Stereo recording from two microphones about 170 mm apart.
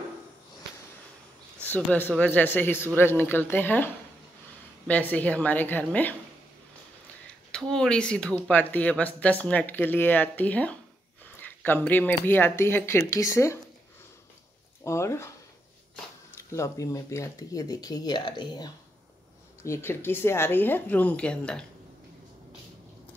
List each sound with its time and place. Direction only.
1.7 s speech: 10° left (ahead or behind)
7.5 s speech: 5° left (ahead or behind)
14.8 s speech: 15° left (ahead or behind)
16.3 s speech: 15° left (ahead or behind)
19.6 s speech: 15° left (ahead or behind)